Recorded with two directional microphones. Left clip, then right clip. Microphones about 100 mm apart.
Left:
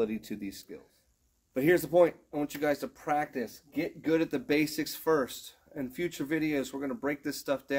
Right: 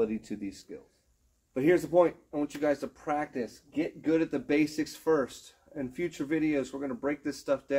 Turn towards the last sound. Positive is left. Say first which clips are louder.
# right 2 dB
turn(degrees=30)  # may be behind; listen again after turning